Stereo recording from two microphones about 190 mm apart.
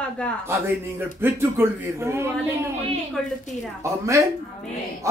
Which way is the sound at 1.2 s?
15° right (ahead or behind).